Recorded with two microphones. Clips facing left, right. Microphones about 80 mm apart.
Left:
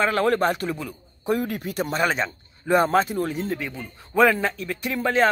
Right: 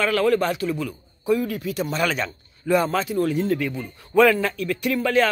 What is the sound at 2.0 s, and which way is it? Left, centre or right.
A man's voice, left.